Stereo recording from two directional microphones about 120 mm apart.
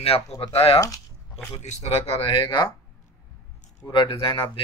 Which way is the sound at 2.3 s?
40° left (ahead or behind).